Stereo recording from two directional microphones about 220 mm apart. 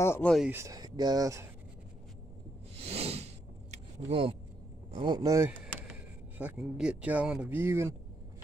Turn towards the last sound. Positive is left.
turn(degrees=-10)  # may be behind; listen again after turning